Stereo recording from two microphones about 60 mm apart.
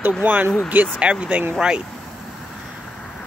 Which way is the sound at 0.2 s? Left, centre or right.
Right.